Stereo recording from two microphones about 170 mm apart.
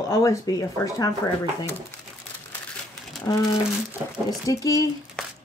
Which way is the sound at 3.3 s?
25° left (ahead or behind).